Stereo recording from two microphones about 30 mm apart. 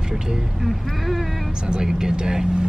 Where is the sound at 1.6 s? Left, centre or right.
Right.